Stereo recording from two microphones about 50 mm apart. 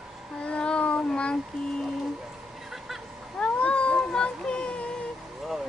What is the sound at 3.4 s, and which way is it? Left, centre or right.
Cat, left.